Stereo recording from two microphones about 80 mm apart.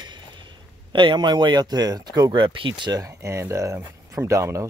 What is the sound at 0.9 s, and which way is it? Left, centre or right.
Speech, right.